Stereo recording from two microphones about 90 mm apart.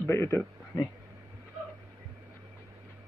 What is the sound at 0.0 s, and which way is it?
Speech, 25° left (ahead or behind).